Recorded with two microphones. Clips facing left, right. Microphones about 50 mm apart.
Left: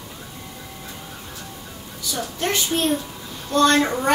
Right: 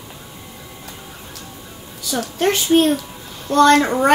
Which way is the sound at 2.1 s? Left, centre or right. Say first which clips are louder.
Right 6 dB; right.